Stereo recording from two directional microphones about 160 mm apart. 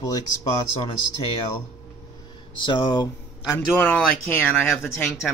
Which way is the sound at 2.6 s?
30° left (ahead or behind).